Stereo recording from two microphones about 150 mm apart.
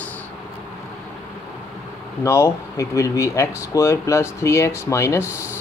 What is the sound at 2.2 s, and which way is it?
Speech, 20° left (ahead or behind).